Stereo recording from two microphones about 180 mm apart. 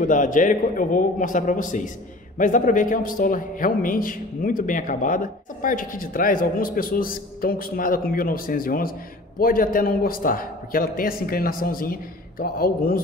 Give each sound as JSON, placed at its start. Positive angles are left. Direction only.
{"t": 0.0, "sound": "a man's voice", "side_deg": 45}